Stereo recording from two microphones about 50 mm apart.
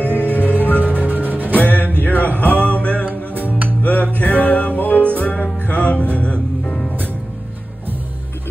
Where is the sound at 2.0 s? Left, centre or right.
Left.